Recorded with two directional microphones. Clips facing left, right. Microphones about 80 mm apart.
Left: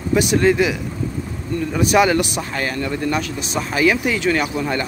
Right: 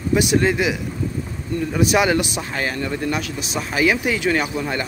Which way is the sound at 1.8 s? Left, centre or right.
Centre.